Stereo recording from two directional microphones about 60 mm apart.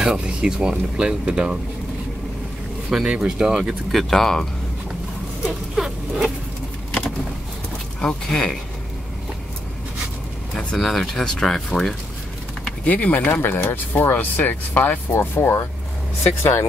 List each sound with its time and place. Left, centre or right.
0.0 s speech: centre
2.9 s speech: centre
3.9 s speech: centre
5.8 s rodents: centre
8.0 s speech: centre
10.5 s speech: centre
12.8 s speech: left
13.3 s speech: left